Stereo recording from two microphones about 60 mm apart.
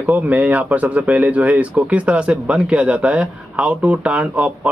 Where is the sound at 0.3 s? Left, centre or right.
Right.